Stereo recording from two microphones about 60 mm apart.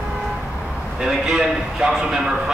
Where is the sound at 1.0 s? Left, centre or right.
Centre.